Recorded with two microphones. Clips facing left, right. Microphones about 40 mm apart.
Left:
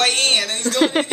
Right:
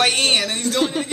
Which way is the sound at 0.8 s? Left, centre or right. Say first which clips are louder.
Left 5 dB; left.